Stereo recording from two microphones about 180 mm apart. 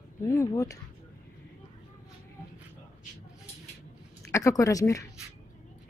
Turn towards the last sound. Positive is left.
turn(degrees=15)  # may be behind; listen again after turning